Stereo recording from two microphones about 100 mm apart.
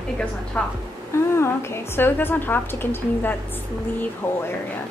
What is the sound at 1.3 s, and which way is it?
A woman's voice, 25° left (ahead or behind).